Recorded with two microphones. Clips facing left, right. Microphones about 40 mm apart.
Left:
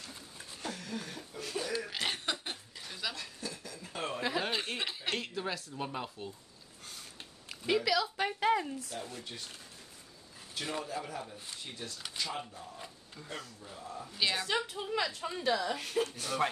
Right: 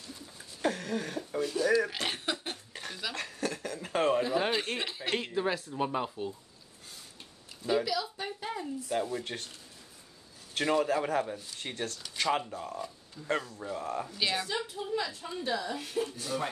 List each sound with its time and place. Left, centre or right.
0.6 s a sound: right
1.6 s a sound: right
1.9 s cough: centre
2.7 s a sound: right
4.5 s chuckle: centre
5.1 s speech: centre
7.4 s speech: left
8.9 s speech: right
10.5 s speech: right
12.2 s speech: right
14.1 s a woman's voice: centre
14.5 s speech: left